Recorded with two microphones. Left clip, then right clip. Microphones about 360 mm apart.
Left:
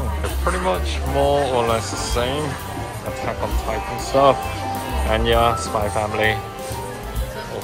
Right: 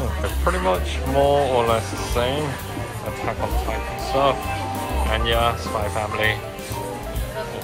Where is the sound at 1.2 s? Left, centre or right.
Centre.